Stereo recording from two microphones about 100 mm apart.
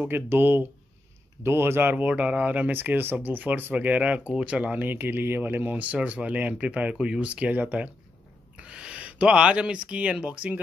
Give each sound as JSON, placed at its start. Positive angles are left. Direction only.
{"t": 0.0, "sound": "speech", "side_deg": -20}